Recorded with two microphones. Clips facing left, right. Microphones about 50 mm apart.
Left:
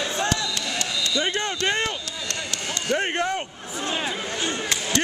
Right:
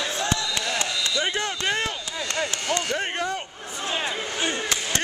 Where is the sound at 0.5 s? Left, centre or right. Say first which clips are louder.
Right 1 dB; right.